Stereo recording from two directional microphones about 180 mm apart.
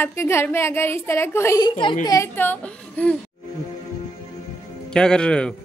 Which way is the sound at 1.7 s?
25° left (ahead or behind).